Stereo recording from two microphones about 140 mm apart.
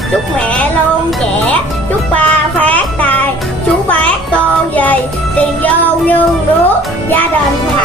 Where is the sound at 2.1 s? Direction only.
10° left (ahead or behind).